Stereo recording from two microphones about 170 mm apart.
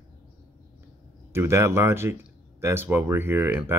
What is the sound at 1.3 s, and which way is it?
Speech, 15° right (ahead or behind).